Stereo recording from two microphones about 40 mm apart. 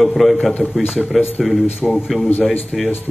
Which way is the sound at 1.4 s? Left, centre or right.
Centre.